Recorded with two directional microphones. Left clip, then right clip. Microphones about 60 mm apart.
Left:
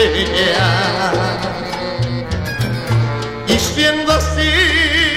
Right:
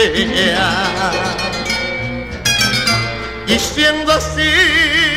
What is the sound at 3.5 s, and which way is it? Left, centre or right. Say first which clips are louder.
Music: right 1 dB; left.